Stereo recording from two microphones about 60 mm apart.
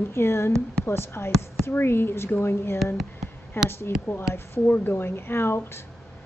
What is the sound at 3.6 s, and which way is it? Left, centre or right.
Speech, left.